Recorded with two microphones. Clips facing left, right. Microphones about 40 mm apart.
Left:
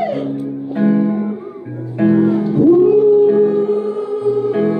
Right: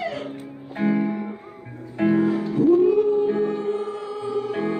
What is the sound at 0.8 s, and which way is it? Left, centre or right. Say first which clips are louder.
Music: left 7 dB; centre.